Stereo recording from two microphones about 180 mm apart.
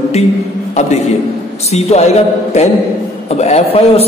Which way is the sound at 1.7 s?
35° left (ahead or behind).